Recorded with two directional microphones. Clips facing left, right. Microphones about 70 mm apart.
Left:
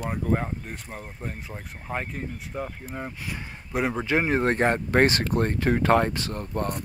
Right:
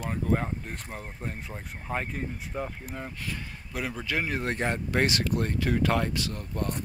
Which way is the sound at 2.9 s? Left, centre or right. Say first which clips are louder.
Left 3 dB; centre.